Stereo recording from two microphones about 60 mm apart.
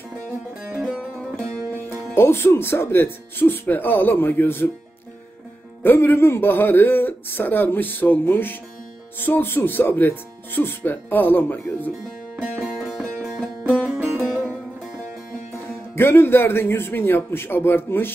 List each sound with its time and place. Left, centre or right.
0.7 s music: centre
2.1 s speech: left
5.8 s speech: left
12.5 s music: centre
13.7 s music: centre
15.9 s speech: left